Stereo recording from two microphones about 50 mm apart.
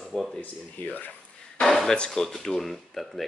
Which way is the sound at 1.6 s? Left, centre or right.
Centre.